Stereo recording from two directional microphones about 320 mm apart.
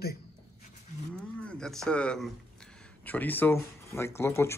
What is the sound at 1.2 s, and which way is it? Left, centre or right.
Speech, centre.